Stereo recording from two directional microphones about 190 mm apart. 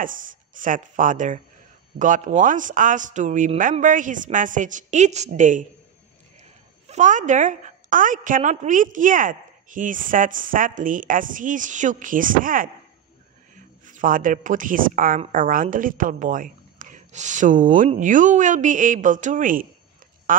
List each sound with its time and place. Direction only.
0.6 s a woman's voice: 45° right (ahead or behind)
6.9 s speech: 40° right (ahead or behind)
13.8 s speech: 45° right (ahead or behind)
20.3 s duck: 45° right (ahead or behind)